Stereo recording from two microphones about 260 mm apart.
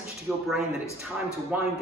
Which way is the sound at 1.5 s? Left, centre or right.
Centre.